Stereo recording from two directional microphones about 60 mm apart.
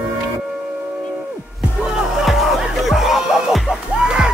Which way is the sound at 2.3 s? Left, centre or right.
Centre.